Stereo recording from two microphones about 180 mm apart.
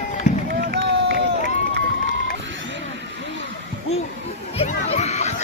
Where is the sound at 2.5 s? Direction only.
90° right.